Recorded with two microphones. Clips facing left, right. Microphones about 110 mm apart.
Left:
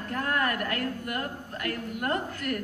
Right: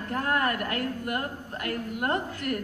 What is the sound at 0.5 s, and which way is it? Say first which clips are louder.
Speech: even; 45° left (ahead or behind).